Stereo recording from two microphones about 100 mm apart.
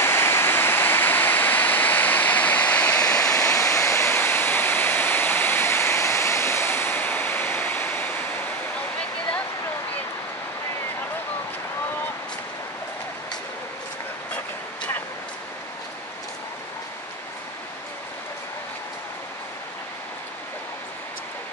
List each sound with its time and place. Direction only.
0.0 s waterfall: 25° left (ahead or behind)
3.3 s waterfall: 25° left (ahead or behind)